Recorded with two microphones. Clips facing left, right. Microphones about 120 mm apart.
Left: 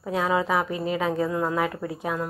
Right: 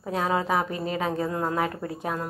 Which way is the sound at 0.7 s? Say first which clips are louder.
Left 2 dB; 20° left (ahead or behind).